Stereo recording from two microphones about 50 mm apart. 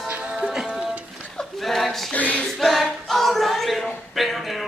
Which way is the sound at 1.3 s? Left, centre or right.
Centre.